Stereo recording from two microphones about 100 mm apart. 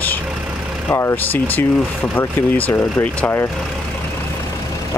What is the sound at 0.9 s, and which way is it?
Speech, 25° left (ahead or behind).